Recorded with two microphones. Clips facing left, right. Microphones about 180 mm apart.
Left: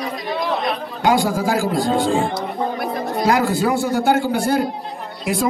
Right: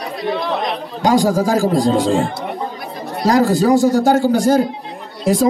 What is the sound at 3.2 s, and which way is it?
A man's voice, 40° right (ahead or behind).